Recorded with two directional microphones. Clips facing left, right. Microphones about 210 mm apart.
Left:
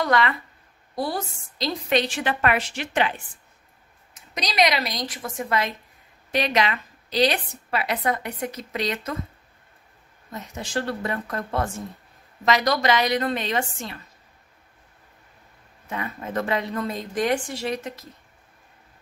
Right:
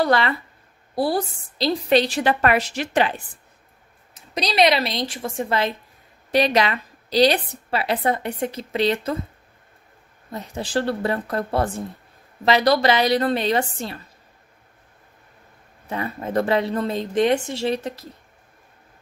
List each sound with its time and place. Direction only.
0.0 s a woman's voice: 30° right (ahead or behind)
10.3 s a woman's voice: 35° right (ahead or behind)
15.9 s speech: 35° right (ahead or behind)